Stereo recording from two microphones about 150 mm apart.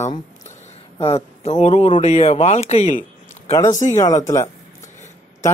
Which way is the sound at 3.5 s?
20° left (ahead or behind).